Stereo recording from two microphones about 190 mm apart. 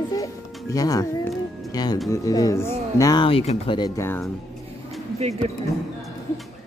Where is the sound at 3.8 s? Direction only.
15° left (ahead or behind).